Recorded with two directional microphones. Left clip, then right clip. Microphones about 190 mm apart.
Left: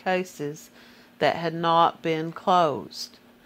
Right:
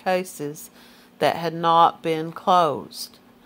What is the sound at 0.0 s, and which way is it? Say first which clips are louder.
Speech: right 3 dB; 25° left (ahead or behind).